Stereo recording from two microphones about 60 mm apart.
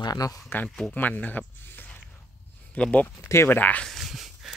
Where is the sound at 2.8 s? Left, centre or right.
Left.